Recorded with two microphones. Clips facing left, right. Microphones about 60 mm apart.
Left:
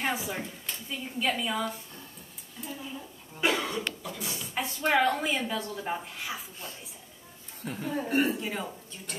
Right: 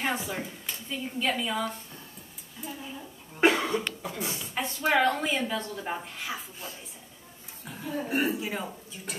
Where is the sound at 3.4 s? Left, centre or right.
Right.